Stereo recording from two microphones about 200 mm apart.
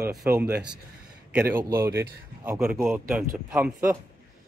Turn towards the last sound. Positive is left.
turn(degrees=-10)  # may be behind; listen again after turning